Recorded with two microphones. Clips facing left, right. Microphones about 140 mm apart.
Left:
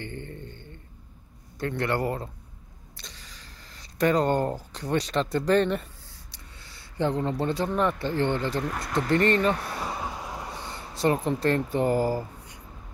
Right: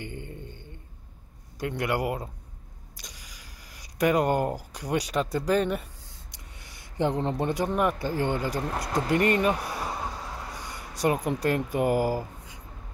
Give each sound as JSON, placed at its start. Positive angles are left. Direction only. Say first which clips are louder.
{"t": 0.0, "sound": "a sound", "louder": "left 1 dB", "side_deg": -15}
{"t": 1.6, "sound": "speech", "louder": "left 1 dB", "side_deg": -10}
{"t": 8.6, "sound": "speech", "louder": "right 1 dB", "side_deg": -35}
{"t": 8.9, "sound": "speech", "louder": "left 1 dB", "side_deg": -10}
{"t": 10.6, "sound": "speech", "louder": "left 1 dB", "side_deg": -15}